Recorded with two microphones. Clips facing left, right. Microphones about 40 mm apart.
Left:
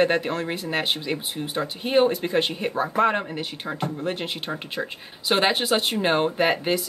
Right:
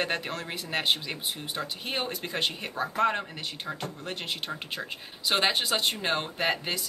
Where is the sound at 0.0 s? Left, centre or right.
Centre.